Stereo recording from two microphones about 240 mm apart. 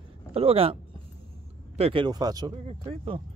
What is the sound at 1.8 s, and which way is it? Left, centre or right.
Speech, right.